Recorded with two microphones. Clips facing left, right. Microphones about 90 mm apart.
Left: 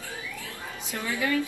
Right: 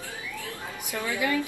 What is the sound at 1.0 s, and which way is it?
Speech, 20° right (ahead or behind).